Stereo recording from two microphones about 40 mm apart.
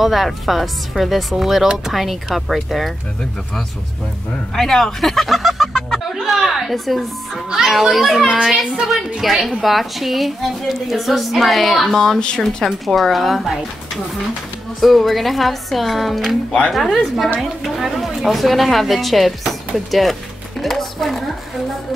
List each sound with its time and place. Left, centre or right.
0.0 s a woman's voice: centre
4.6 s a child's voice: centre
9.2 s a child's voice: centre
12.2 s speech: left
12.8 s a woman's voice: centre
14.8 s a woman's voice: centre
20.6 s a sound: centre